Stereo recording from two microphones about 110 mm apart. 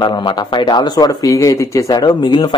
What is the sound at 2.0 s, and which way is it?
Speech, 45° left (ahead or behind).